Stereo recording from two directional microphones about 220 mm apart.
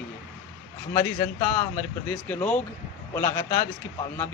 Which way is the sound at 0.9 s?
15° left (ahead or behind).